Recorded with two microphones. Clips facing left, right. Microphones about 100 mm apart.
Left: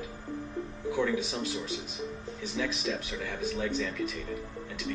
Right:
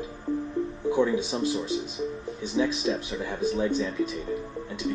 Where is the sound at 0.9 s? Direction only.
25° right (ahead or behind).